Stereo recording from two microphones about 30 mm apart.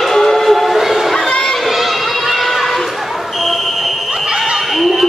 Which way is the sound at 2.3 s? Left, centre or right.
Centre.